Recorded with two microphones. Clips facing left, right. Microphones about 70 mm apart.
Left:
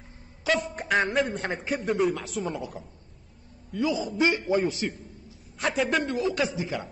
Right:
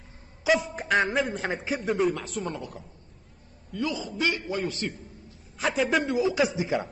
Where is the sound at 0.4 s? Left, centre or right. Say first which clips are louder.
Right 2 dB; centre.